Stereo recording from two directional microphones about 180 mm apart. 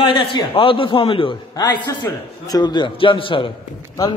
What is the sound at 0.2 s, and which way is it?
A man's voice, 30° left (ahead or behind).